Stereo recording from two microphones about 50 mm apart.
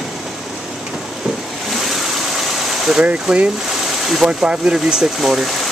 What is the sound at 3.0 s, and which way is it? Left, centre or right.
Speech, centre.